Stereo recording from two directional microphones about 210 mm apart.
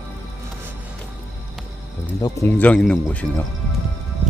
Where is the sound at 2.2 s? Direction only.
10° left (ahead or behind).